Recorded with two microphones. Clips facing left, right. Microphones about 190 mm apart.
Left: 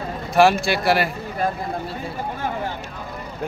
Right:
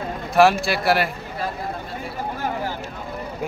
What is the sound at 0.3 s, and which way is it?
Speech, centre (ahead or behind).